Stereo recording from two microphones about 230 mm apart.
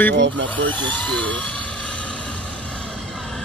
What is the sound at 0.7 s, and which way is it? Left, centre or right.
Vehicle, centre.